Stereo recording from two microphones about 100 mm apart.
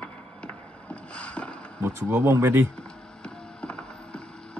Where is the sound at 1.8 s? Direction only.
25° right (ahead or behind).